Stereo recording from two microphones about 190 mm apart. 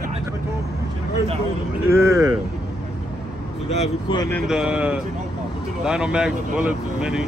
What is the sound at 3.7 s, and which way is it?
Speech, 35° left (ahead or behind).